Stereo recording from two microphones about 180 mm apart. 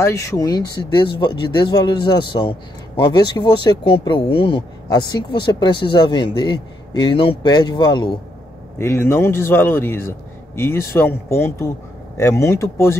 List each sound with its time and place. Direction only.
0.0 s speech: 15° left (ahead or behind)
8.7 s a man's voice: 15° left (ahead or behind)